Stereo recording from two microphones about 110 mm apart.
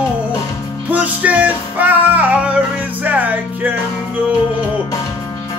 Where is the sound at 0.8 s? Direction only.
15° right (ahead or behind).